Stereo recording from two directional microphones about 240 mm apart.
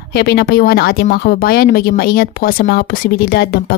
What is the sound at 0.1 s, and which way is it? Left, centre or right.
Speech, left.